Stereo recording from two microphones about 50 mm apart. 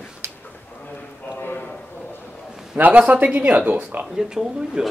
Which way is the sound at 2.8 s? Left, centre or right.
Right.